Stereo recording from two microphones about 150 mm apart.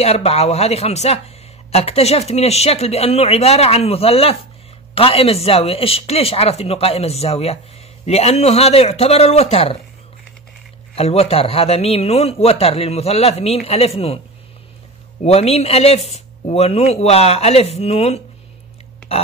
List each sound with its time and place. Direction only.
0.0 s a man's voice: 45° left (ahead or behind)
11.0 s speech: 45° left (ahead or behind)
15.2 s speech: 45° left (ahead or behind)